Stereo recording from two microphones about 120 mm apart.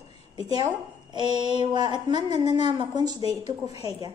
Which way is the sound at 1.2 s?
40° right (ahead or behind).